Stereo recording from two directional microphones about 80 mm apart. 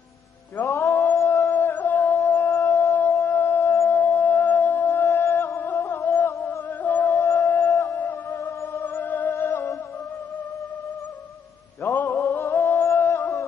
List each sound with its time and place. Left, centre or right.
0.7 s a sound: left
1.1 s music: left
1.5 s music: left
2.1 s a sound: left
3.3 s music: left
4.2 s music: left
6.8 s music: left
7.1 s music: left
8.0 s music: left
8.4 s music: left
9.0 s music: left
9.3 s music: left
11.8 s music: left
12.2 s music: left